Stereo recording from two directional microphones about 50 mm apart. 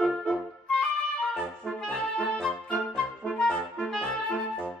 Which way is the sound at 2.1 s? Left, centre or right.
Centre.